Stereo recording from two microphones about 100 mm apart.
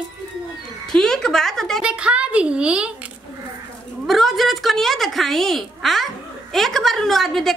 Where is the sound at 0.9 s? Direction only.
5° left (ahead or behind).